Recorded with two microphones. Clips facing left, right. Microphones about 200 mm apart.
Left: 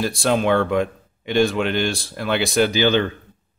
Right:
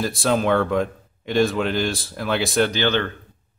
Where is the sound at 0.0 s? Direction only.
Centre (ahead or behind).